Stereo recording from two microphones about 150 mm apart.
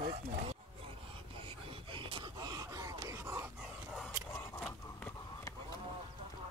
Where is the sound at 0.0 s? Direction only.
35° right (ahead or behind).